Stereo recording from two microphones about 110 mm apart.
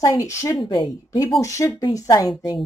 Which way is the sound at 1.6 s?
45° left (ahead or behind).